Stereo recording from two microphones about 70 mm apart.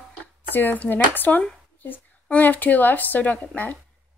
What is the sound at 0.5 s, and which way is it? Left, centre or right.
A woman's voice, left.